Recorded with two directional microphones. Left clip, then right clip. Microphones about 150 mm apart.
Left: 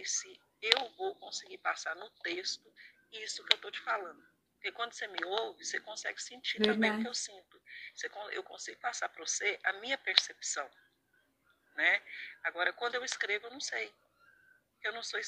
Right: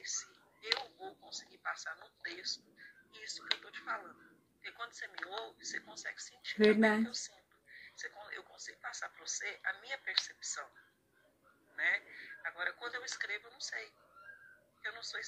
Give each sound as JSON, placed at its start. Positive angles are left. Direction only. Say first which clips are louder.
{"t": 0.0, "sound": "speech", "louder": "left 5 dB", "side_deg": 45}
{"t": 6.7, "sound": "speech", "louder": "right 2 dB", "side_deg": 0}
{"t": 7.1, "sound": "speech", "louder": "left 5 dB", "side_deg": 45}
{"t": 11.7, "sound": "speech", "louder": "left 5 dB", "side_deg": 45}